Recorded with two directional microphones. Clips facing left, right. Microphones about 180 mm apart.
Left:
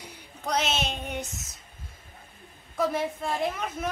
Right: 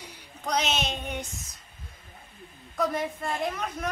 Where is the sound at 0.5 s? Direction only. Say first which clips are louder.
Even; 5° left (ahead or behind).